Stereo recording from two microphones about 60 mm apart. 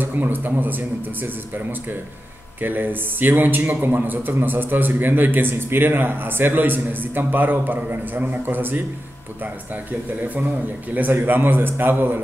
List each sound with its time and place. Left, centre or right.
0.0 s a man's voice: right
11.0 s a man's voice: right